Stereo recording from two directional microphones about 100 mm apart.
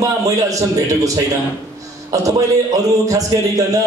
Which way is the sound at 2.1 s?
35° right (ahead or behind).